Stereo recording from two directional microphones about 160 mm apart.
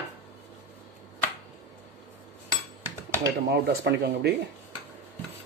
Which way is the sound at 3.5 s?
90° right.